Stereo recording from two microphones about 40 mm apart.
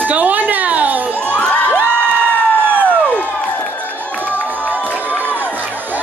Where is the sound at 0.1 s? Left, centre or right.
Right.